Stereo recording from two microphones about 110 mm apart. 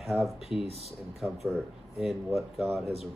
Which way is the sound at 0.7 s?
70° right (ahead or behind).